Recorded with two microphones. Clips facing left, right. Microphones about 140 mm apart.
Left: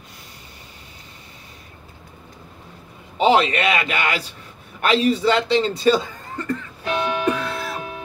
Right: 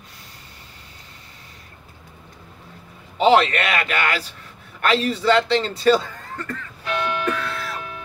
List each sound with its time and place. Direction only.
3.2 s a man's voice: 15° left (ahead or behind)
4.8 s chuckle: 15° left (ahead or behind)